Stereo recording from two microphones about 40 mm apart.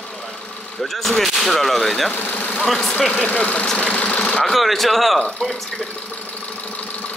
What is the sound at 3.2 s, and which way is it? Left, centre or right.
Speech, left.